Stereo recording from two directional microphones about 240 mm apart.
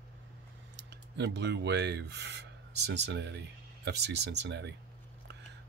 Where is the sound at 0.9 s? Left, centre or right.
Right.